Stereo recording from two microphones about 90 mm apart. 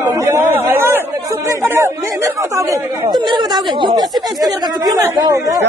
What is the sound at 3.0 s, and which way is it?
A man's voice, 55° right (ahead or behind).